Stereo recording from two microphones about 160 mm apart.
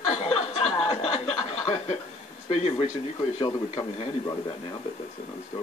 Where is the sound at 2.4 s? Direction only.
40° left (ahead or behind).